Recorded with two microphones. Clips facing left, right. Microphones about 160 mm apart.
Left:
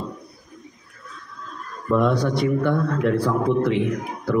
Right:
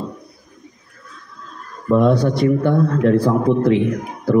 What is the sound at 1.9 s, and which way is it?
A man's voice, 30° right (ahead or behind).